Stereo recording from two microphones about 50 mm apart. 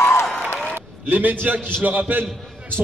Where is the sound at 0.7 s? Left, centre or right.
Right.